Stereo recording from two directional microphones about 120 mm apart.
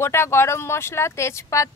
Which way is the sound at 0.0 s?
20° left (ahead or behind).